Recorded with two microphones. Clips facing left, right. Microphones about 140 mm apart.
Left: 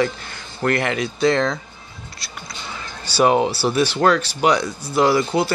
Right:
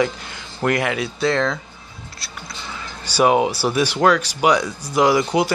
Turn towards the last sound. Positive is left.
turn(degrees=-15)  # may be behind; listen again after turning